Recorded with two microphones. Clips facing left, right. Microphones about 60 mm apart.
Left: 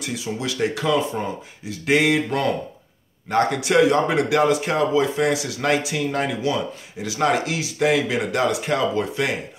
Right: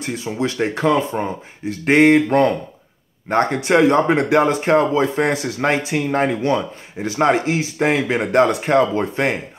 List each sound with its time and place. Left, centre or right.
0.0 s speech: right